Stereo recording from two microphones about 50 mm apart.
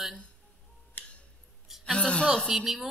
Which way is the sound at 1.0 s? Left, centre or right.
Left.